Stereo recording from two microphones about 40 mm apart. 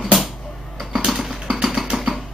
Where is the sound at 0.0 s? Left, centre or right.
Centre.